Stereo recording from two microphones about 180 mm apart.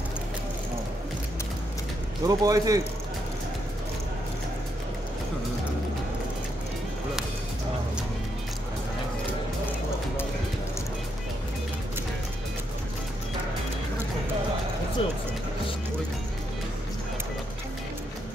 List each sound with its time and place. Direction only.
2.2 s a man's voice: 20° right (ahead or behind)
15.0 s speech: 30° left (ahead or behind)